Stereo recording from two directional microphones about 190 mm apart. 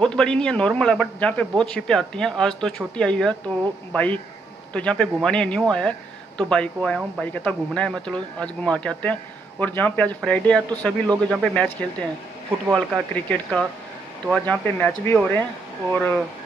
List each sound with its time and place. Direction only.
0.0 s speech: 5° left (ahead or behind)
12.7 s speech: 5° left (ahead or behind)